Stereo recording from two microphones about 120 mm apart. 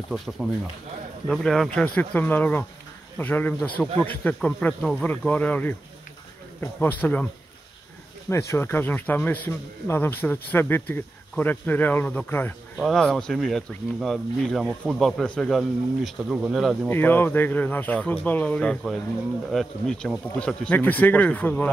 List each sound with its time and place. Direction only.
1.2 s a man's voice: centre (ahead or behind)
8.3 s a man's voice: 25° left (ahead or behind)
12.7 s speech: centre (ahead or behind)
16.9 s a man's voice: 15° left (ahead or behind)